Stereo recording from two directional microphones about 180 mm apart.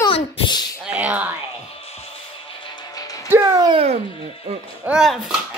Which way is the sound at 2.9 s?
20° left (ahead or behind).